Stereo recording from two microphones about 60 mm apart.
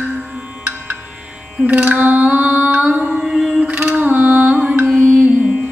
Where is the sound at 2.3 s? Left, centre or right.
Right.